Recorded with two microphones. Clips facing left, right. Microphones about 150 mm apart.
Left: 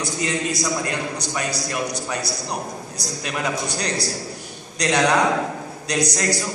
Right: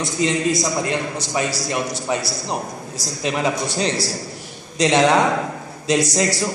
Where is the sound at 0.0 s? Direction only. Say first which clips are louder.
Right 5 dB; 25° right (ahead or behind).